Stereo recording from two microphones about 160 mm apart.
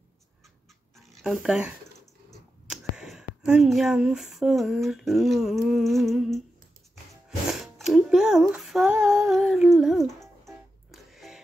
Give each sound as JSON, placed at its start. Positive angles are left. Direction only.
{"t": 0.9, "sound": "a sound", "side_deg": 0}
{"t": 2.7, "sound": "speech", "side_deg": -5}
{"t": 7.2, "sound": "music", "side_deg": 0}
{"t": 9.0, "sound": "female singing", "side_deg": -15}
{"t": 9.3, "sound": "humming", "side_deg": 0}
{"t": 10.9, "sound": "music", "side_deg": 0}